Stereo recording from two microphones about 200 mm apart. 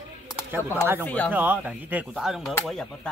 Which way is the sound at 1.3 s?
10° right (ahead or behind).